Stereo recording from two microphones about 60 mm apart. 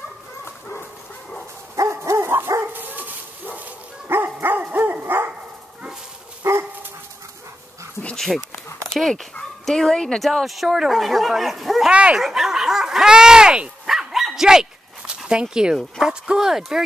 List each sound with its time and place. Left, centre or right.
0.5 s dog: left
1.8 s dog: right
2.6 s dog: right
4.1 s dog: right
6.4 s dog: right
8.9 s speech: centre
11.9 s speech: centre
12.2 s dog: centre